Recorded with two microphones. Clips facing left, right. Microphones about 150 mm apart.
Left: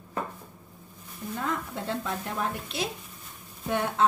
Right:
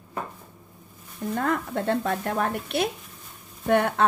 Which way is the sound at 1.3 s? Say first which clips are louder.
Right 6 dB; 60° right (ahead or behind).